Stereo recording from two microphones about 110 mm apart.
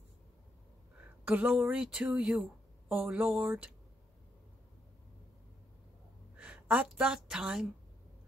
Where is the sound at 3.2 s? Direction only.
20° right (ahead or behind).